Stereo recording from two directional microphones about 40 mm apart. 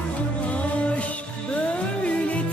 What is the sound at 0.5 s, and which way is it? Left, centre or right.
Music, left.